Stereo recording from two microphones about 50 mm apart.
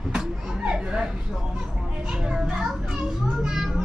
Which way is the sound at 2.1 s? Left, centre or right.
Centre.